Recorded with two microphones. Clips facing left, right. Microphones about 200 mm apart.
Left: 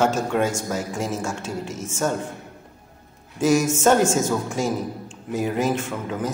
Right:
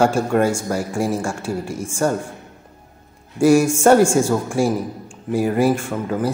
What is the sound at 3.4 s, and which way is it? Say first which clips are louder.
Speech: right 5 dB; 10° right (ahead or behind).